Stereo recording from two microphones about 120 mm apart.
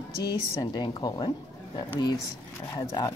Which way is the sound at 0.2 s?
35° left (ahead or behind).